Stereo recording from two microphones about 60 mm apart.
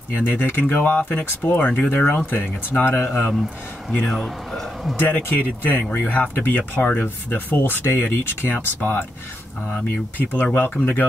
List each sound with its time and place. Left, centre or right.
0.1 s speech: left
4.9 s speech: left